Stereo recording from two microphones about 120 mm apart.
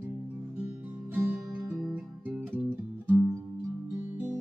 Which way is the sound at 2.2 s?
15° right (ahead or behind).